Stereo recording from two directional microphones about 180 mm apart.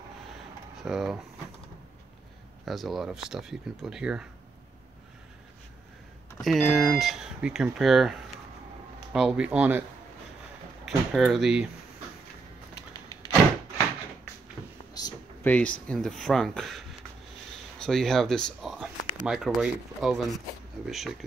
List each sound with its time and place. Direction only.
0.8 s speech: centre (ahead or behind)
2.6 s speech: centre (ahead or behind)
6.4 s speech: centre (ahead or behind)
10.9 s speech: centre (ahead or behind)
12.9 s a sound: 20° left (ahead or behind)
15.0 s a sound: 20° left (ahead or behind)
15.4 s speech: 10° left (ahead or behind)
17.8 s speech: centre (ahead or behind)